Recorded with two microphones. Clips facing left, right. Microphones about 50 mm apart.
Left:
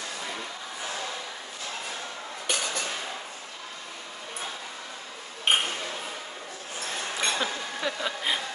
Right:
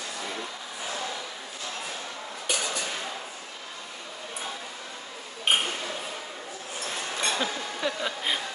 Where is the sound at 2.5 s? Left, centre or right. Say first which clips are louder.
Even; left.